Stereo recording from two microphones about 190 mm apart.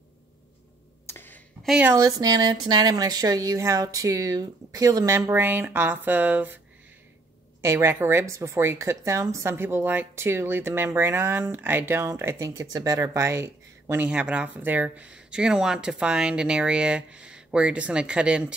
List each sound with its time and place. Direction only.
1.0 s a sound: 10° left (ahead or behind)
1.7 s a woman's voice: 10° right (ahead or behind)
2.0 s a woman's voice: 20° right (ahead or behind)
7.6 s a woman's voice: 15° right (ahead or behind)